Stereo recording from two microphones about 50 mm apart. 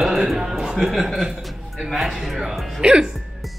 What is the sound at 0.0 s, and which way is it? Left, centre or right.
Speech, centre.